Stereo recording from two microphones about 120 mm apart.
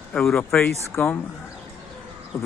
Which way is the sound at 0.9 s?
15° left (ahead or behind).